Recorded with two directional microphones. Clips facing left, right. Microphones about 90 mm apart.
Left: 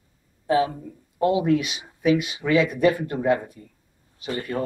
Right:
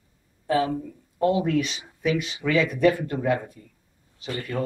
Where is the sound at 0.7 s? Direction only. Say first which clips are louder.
Right 6 dB; 10° left (ahead or behind).